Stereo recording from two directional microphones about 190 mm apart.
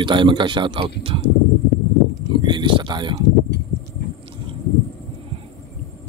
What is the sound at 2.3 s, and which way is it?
Speech, 25° right (ahead or behind).